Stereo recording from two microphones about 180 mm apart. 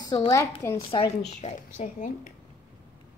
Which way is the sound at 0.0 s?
25° left (ahead or behind).